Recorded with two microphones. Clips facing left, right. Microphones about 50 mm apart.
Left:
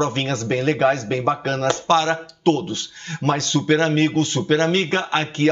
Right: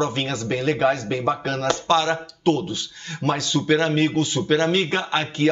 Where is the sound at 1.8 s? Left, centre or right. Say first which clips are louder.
Left 2 dB; left.